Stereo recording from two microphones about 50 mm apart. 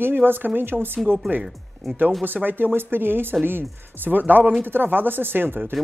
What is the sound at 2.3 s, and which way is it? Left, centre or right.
Speech, right.